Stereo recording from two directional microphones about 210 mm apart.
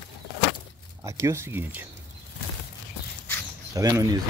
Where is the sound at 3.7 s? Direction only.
15° right (ahead or behind).